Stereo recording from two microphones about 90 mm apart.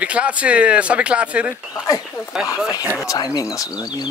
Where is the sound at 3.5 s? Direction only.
40° left (ahead or behind).